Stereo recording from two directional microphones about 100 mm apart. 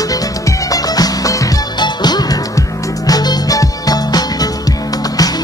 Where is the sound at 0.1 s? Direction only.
35° left (ahead or behind).